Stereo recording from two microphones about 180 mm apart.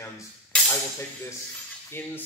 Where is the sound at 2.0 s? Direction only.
10° left (ahead or behind).